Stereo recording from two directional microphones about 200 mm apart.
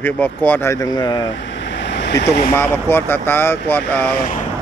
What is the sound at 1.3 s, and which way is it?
Vehicle, 65° left (ahead or behind).